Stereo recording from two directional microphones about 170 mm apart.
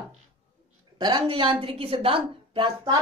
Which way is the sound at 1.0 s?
30° right (ahead or behind).